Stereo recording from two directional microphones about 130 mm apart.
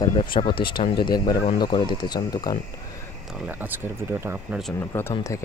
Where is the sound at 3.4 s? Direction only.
15° right (ahead or behind).